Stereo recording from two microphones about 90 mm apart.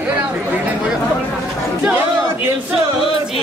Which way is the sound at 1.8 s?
15° right (ahead or behind).